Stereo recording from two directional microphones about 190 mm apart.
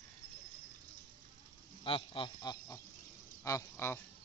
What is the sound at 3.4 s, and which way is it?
Speech, 15° left (ahead or behind).